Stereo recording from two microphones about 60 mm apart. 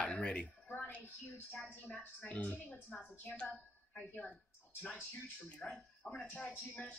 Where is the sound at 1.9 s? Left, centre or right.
Left.